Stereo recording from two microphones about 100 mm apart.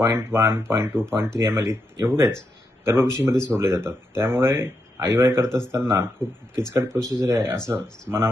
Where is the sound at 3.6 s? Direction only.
25° right (ahead or behind).